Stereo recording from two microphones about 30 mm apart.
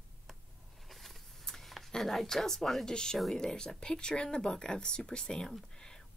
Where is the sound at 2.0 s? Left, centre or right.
Centre.